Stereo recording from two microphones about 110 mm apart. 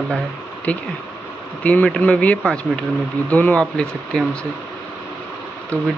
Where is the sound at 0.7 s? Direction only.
10° left (ahead or behind).